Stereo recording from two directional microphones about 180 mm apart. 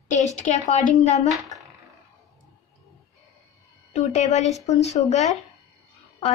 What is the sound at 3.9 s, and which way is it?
Speech, 40° left (ahead or behind).